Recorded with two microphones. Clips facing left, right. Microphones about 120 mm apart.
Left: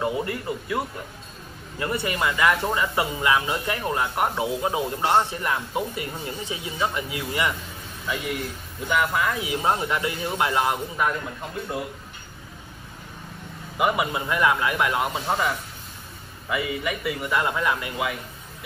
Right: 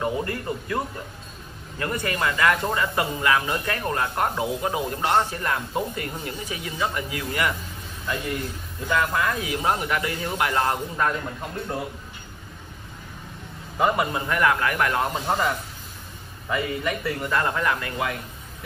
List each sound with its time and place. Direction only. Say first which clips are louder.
0.0 s speech: even; 15° left (ahead or behind)
2.0 s speech: even; 15° left (ahead or behind)
8.8 s speech: even; 15° left (ahead or behind)
13.7 s a man's voice: right 1 dB; 10° left (ahead or behind)